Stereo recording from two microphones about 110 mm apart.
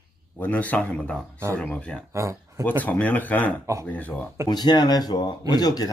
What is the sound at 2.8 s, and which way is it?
Speech, 15° left (ahead or behind).